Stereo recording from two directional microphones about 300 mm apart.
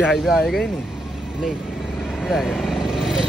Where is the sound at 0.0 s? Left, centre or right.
Centre.